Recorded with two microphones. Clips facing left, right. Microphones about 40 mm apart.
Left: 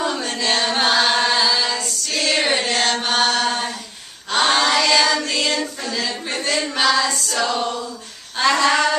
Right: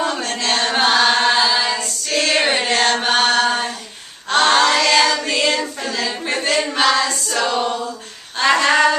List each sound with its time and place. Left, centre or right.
0.3 s chant: centre
1.8 s a sound: centre
4.3 s choir: centre
5.2 s music: centre
6.0 s a sound: centre
6.7 s female singing: centre
7.2 s a capella: centre
8.5 s female singing: centre